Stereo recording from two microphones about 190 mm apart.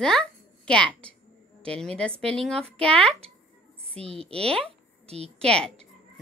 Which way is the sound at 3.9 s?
30° right (ahead or behind).